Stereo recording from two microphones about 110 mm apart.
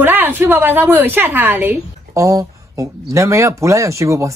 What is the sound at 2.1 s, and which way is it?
Speech, 30° right (ahead or behind).